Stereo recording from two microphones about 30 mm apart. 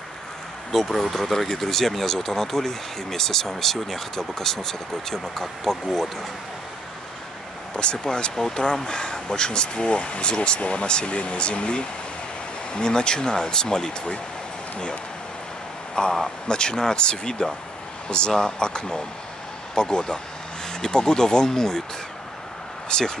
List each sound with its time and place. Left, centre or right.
0.7 s speech: centre
7.7 s speech: left
15.9 s speech: left
22.8 s speech: left